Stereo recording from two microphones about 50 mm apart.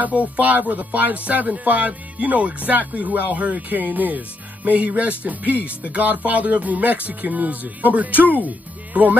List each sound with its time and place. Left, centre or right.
0.0 s speech: right